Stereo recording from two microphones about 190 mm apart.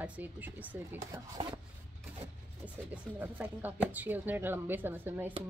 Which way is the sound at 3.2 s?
10° right (ahead or behind).